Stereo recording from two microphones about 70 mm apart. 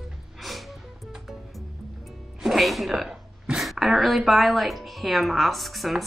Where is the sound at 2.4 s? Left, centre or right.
Centre.